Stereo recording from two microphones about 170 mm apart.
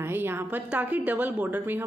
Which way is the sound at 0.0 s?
15° right (ahead or behind).